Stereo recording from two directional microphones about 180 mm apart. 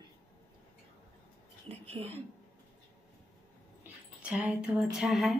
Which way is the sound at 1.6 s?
35° right (ahead or behind).